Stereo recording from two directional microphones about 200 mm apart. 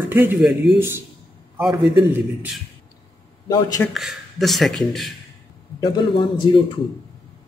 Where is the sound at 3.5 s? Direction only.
15° left (ahead or behind).